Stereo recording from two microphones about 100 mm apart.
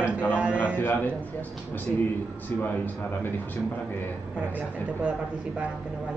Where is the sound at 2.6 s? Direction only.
20° left (ahead or behind).